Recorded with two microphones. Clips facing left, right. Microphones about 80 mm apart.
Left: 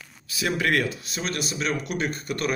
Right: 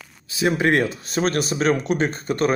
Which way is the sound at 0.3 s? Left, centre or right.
Right.